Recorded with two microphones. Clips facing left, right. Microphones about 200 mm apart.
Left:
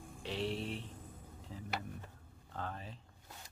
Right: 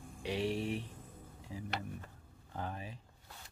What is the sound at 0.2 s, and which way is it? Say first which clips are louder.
Speech: right 3 dB; 15° right (ahead or behind).